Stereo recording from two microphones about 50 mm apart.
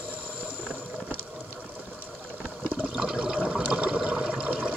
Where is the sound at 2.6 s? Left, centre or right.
Right.